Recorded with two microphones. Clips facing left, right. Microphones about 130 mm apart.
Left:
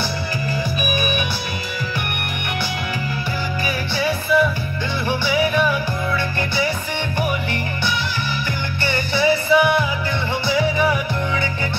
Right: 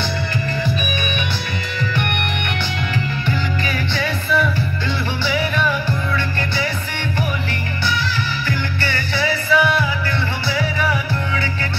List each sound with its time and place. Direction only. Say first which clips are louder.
3.6 s music: left 1 dB; 10° left (ahead or behind)
8.8 s music: left 5 dB; 20° left (ahead or behind)